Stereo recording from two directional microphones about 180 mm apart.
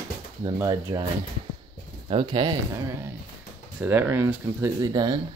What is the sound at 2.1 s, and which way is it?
Speech, 25° right (ahead or behind).